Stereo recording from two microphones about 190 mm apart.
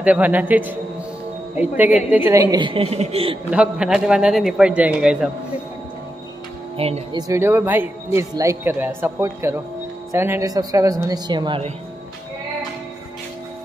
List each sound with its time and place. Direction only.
0.0 s speech: 10° right (ahead or behind); by 3.3 s 30° right (ahead or behind)
3.4 s a man's voice: 5° right (ahead or behind)
6.8 s a woman's voice: 30° right (ahead or behind)